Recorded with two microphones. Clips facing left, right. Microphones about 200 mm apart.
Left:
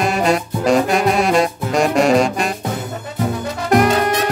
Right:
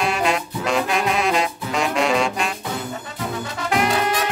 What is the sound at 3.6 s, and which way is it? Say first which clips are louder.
Brass instrument: left 6 dB; 45° left (ahead or behind).